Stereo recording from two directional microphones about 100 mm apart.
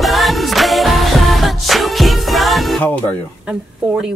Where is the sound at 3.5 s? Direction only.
5° right (ahead or behind).